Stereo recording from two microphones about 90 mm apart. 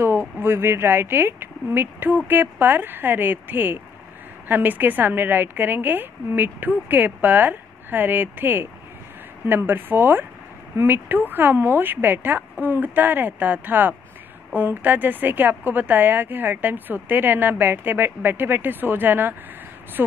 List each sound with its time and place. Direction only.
0.0 s a woman's voice: 30° right (ahead or behind)